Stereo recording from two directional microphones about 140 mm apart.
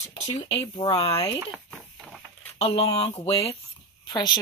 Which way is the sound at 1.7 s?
Centre (ahead or behind).